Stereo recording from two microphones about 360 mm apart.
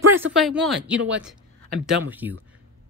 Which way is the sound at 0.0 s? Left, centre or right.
Centre.